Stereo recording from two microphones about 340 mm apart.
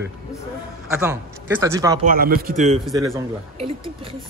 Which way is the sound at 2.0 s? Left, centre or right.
Right.